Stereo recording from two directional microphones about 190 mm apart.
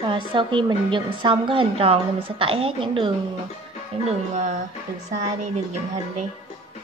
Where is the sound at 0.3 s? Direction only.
25° right (ahead or behind).